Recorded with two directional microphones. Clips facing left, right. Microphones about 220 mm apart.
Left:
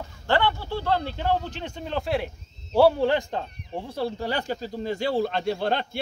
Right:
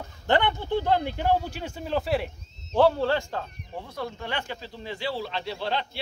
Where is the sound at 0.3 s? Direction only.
20° right (ahead or behind).